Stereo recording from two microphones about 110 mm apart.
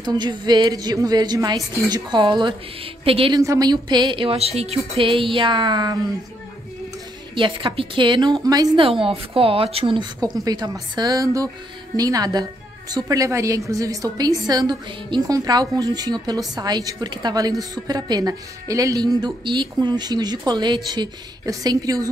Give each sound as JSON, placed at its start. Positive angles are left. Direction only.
{"t": 0.0, "sound": "a woman's voice", "side_deg": -40}
{"t": 3.3, "sound": "a woman's voice", "side_deg": -35}
{"t": 7.3, "sound": "a woman's voice", "side_deg": -50}
{"t": 8.3, "sound": "a woman's voice", "side_deg": -35}
{"t": 9.0, "sound": "speech", "side_deg": -60}
{"t": 10.4, "sound": "a woman's voice", "side_deg": -35}